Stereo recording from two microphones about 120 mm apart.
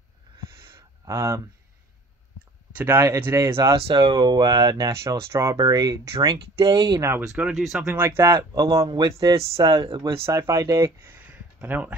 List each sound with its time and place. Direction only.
0.7 s a sound: 25° right (ahead or behind)
2.7 s speech: 15° right (ahead or behind)
3.8 s speech: 40° right (ahead or behind)
6.1 s speech: 45° right (ahead or behind)
6.6 s speech: 35° right (ahead or behind)
7.0 s speech: 20° right (ahead or behind)
7.2 s speech: 5° right (ahead or behind)
7.9 s speech: 20° right (ahead or behind)